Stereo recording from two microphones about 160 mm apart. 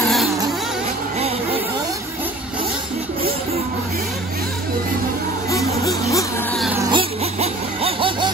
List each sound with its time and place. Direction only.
5.5 s music: 20° left (ahead or behind)
6.9 s music: 35° right (ahead or behind)